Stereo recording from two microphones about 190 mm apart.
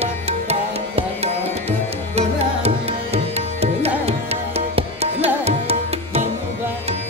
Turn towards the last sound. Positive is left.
turn(degrees=-35)  # may be behind; listen again after turning